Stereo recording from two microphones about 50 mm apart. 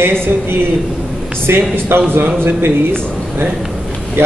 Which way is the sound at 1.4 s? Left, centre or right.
Right.